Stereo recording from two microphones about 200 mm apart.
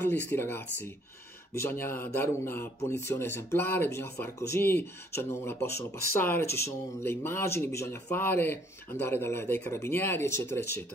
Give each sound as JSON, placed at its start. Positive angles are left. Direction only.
{"t": 0.0, "sound": "speech", "side_deg": 10}